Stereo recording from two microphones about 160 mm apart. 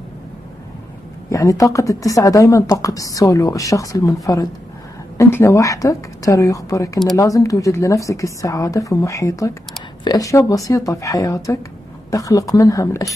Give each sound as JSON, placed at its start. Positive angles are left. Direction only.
{"t": 1.3, "sound": "speech", "side_deg": 20}
{"t": 5.1, "sound": "speech", "side_deg": 20}